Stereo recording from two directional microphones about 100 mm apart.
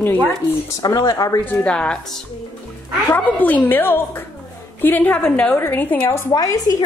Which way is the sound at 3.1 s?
15° left (ahead or behind).